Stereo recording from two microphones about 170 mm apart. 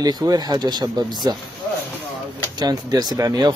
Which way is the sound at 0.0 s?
25° right (ahead or behind).